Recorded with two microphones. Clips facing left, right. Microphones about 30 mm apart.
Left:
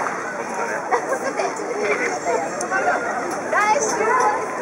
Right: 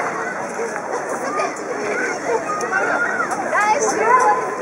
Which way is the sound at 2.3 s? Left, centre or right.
Centre.